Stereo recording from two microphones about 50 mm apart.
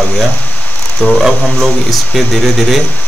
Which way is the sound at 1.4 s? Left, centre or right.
Centre.